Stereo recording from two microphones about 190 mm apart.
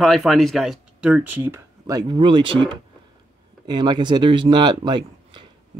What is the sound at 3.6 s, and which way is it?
Speech, 20° right (ahead or behind).